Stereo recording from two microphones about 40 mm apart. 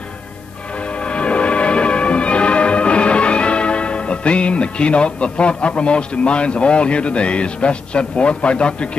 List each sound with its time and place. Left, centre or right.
1.0 s music: left